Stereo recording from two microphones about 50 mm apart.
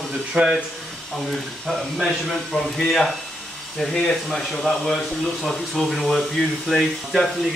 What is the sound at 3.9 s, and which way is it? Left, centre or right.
Speech, centre.